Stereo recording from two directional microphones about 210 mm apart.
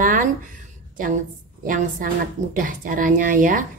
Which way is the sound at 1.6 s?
40° right (ahead or behind).